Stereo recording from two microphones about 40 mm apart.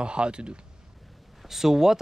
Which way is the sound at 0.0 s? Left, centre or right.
Right.